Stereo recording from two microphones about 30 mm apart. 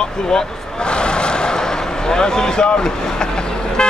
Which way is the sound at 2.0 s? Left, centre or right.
Left.